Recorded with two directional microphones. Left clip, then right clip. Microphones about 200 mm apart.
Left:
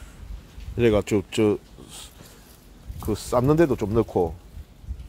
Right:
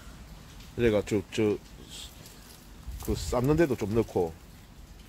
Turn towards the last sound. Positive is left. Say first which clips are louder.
# left 5 dB
turn(degrees=25)  # may be behind; listen again after turning